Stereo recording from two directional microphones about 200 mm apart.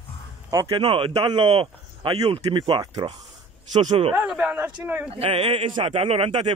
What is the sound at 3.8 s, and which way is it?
Speech, 30° right (ahead or behind).